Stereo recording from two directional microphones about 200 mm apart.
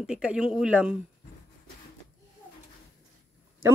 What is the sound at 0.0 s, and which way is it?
Speech, 5° right (ahead or behind).